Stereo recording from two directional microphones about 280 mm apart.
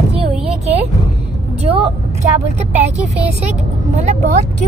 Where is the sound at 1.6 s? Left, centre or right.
Right.